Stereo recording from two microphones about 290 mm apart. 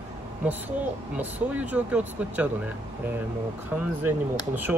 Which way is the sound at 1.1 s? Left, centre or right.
Centre.